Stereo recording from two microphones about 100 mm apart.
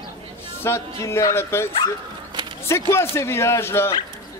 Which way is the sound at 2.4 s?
50° right (ahead or behind).